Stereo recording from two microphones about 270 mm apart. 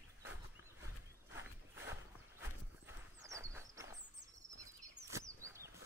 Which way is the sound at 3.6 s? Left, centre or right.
Centre.